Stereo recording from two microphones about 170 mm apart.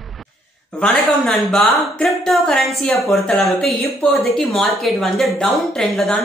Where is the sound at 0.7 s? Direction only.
5° left (ahead or behind).